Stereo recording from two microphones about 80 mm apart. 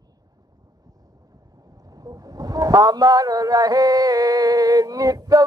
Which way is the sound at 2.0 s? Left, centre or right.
Right.